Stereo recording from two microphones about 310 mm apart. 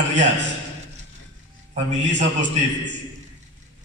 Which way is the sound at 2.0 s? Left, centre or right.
Right.